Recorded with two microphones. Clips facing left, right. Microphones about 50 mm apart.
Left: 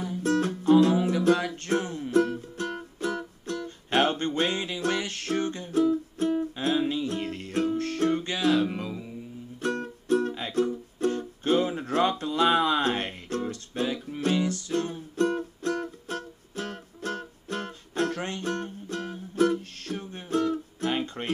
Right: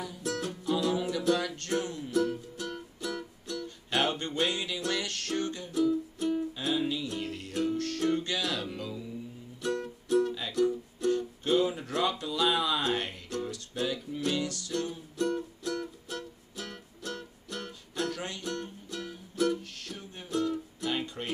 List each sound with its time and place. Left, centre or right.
0.0 s music: left
1.1 s music: left